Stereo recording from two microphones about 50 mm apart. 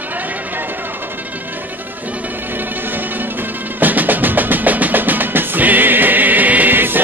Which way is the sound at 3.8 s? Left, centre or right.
Right.